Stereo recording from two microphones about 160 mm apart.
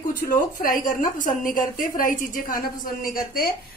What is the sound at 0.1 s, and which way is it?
A woman's voice, 60° left (ahead or behind).